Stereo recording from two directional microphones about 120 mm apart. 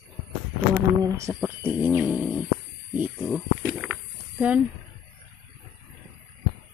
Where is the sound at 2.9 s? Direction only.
10° right (ahead or behind).